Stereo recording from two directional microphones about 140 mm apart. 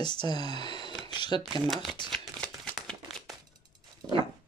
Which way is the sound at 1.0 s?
35° left (ahead or behind).